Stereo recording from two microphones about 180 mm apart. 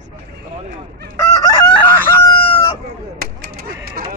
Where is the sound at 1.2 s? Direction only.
20° left (ahead or behind).